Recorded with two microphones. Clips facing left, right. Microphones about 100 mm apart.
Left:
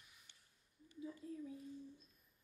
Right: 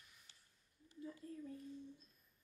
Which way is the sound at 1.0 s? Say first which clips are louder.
Left 2 dB; 5° left (ahead or behind).